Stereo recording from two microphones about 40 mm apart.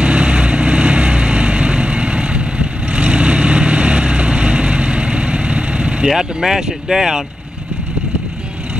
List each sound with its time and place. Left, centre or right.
0.0 s vehicle: right
6.0 s speech: centre